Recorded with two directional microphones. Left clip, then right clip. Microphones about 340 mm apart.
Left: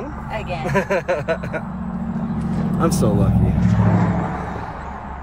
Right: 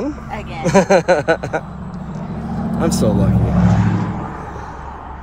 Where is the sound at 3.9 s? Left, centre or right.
Left.